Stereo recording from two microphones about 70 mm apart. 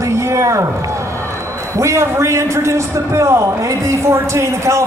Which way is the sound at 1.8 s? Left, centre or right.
Right.